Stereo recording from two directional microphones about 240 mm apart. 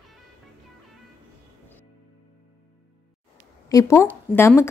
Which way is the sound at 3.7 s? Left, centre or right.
Centre.